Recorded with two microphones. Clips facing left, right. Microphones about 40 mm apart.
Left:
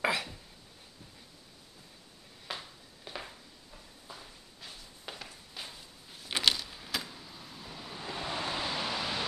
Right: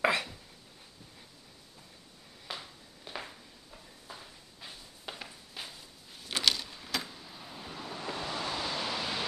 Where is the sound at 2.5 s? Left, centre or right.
Centre.